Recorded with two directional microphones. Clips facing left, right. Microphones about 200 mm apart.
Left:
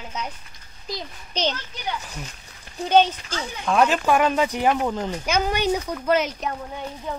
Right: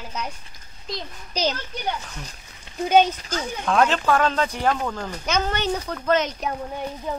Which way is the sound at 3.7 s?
5° left (ahead or behind).